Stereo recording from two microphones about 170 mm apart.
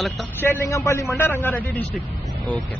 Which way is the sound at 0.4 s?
15° left (ahead or behind).